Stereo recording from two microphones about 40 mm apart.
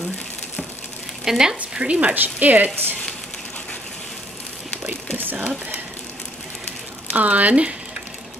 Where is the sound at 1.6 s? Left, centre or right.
Right.